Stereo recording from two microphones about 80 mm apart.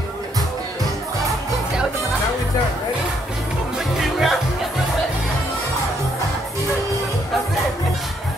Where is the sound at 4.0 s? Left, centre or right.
Centre.